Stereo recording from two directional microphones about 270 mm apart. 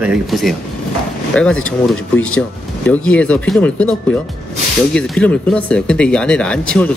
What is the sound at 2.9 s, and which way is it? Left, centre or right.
Speech, centre.